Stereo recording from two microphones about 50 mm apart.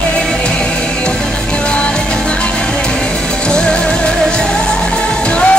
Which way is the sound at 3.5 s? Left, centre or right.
Centre.